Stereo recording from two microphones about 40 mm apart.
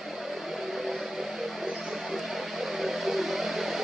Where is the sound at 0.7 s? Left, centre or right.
Centre.